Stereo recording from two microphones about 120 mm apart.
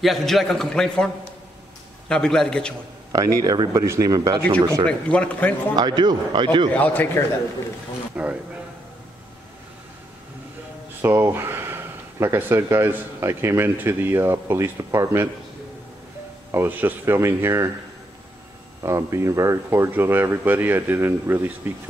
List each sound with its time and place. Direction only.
0.0 s a man's voice: centre (ahead or behind)
3.1 s speech: 30° right (ahead or behind)
4.8 s speech: 10° left (ahead or behind)
5.8 s speech: 35° right (ahead or behind)
6.7 s speech: 15° left (ahead or behind)
8.2 s a man's voice: 10° right (ahead or behind)
11.0 s speech: 20° right (ahead or behind)
16.5 s speech: 15° right (ahead or behind)
18.8 s speech: 25° right (ahead or behind)